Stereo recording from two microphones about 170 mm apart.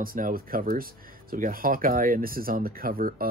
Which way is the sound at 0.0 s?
55° right (ahead or behind).